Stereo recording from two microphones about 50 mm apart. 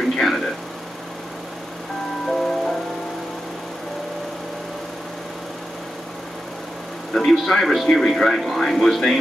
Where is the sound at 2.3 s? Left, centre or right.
Centre.